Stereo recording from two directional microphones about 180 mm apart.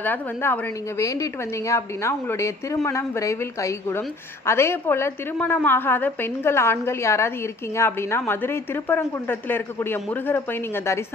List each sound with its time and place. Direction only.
0.0 s a woman's voice: 10° left (ahead or behind)